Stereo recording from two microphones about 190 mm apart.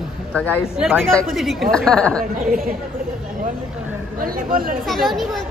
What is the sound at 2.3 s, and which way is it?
Speech, 45° right (ahead or behind).